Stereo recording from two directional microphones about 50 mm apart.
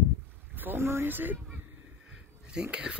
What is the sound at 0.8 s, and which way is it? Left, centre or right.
Speech, right.